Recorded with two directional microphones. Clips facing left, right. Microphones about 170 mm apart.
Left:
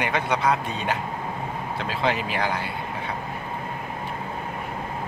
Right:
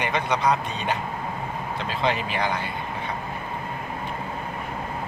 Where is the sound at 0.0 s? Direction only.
5° left (ahead or behind).